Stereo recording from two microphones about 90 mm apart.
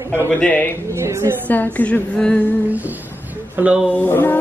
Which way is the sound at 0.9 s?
30° right (ahead or behind).